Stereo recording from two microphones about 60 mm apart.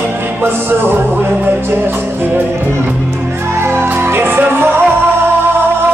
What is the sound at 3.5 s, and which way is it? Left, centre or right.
Music, right.